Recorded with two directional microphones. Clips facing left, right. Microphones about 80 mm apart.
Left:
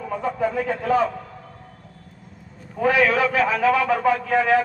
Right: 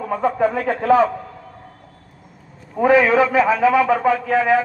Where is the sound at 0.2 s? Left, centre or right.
Right.